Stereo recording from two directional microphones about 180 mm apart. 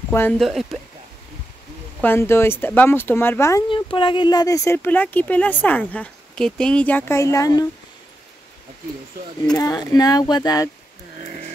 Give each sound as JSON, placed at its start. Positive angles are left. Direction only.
{"t": 0.1, "sound": "speech", "side_deg": 10}
{"t": 0.4, "sound": "speech", "side_deg": 0}
{"t": 2.0, "sound": "speech", "side_deg": 10}
{"t": 3.6, "sound": "speech", "side_deg": 30}
{"t": 9.6, "sound": "speech", "side_deg": 20}